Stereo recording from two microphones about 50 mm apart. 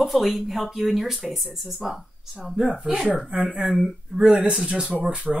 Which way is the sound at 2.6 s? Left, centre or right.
Centre.